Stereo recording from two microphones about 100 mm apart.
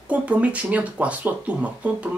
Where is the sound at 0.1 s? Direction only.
15° right (ahead or behind).